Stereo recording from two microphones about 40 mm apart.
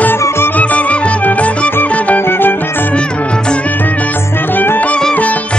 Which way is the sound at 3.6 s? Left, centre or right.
Left.